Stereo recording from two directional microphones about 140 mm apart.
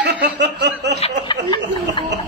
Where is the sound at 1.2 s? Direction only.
35° left (ahead or behind).